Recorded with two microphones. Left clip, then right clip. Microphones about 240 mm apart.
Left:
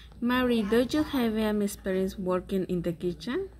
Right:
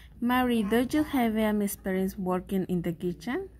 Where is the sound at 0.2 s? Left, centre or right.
Right.